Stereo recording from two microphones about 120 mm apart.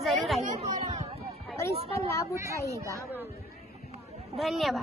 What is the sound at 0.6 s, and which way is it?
Speech, 80° right.